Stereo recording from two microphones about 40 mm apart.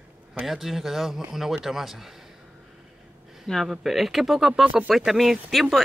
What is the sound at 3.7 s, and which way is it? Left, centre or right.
Speech, centre.